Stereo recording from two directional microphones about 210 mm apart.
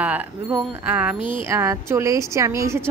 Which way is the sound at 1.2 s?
25° left (ahead or behind).